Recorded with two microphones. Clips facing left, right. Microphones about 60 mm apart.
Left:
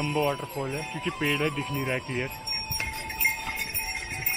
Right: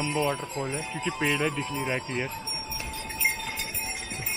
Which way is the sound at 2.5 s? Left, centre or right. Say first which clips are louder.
Left 2 dB; left.